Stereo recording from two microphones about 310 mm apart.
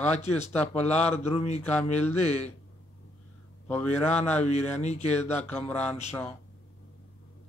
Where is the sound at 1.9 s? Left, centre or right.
Left.